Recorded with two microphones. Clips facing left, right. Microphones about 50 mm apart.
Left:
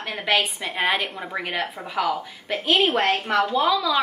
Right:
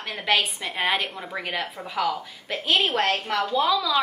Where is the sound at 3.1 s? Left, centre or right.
Left.